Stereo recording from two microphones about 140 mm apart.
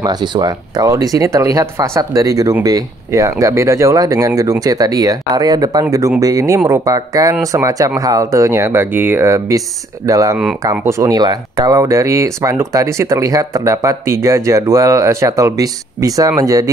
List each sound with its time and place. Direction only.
0.0 s speech: 30° right (ahead or behind)